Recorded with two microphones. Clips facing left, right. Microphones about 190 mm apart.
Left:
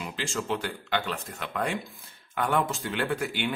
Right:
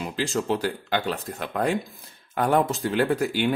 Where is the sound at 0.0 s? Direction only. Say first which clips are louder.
Right 6 dB; 40° right (ahead or behind).